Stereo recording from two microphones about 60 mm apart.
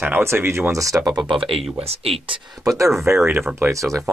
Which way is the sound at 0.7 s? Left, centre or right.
Right.